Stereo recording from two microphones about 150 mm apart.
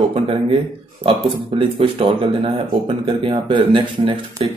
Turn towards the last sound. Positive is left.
turn(degrees=-40)  # may be behind; listen again after turning